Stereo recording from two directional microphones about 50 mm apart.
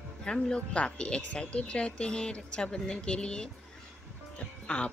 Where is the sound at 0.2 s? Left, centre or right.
Centre.